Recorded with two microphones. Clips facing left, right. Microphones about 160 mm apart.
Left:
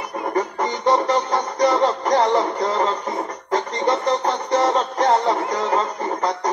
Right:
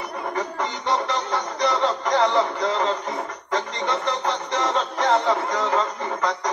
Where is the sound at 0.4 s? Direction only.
45° left (ahead or behind).